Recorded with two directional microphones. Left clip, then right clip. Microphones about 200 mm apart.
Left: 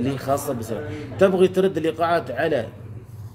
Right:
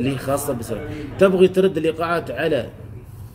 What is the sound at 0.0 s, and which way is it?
A man's voice, 10° right (ahead or behind).